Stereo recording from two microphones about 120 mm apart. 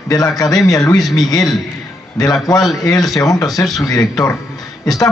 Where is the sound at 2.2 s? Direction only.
30° left (ahead or behind).